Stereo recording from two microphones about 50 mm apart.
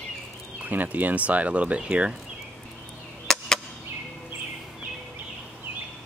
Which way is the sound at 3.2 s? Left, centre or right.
Centre.